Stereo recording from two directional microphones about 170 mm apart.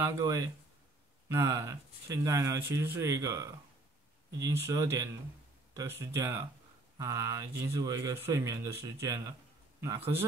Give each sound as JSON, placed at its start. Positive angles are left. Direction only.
{"t": 0.0, "sound": "a man's voice", "side_deg": -20}